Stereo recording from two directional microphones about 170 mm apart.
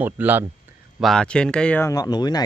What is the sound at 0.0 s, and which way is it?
Speech, 10° right (ahead or behind).